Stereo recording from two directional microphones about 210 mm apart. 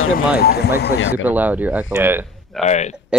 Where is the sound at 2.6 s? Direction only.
35° left (ahead or behind).